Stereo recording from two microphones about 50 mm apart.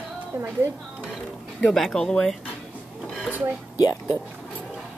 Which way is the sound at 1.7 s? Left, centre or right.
Centre.